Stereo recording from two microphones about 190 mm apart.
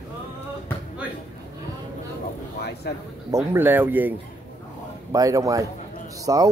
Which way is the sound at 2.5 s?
60° left (ahead or behind).